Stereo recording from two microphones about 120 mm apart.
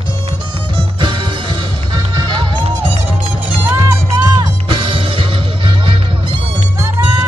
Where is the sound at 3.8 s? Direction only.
30° right (ahead or behind).